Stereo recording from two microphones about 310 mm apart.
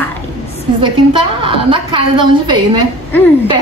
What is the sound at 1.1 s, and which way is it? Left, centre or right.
A woman's voice, centre.